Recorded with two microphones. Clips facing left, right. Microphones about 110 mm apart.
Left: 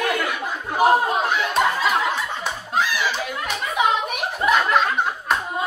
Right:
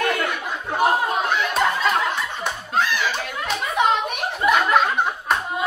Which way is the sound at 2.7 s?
5° left (ahead or behind).